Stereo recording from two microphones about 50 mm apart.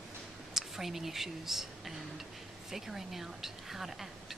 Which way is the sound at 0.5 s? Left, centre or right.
Centre.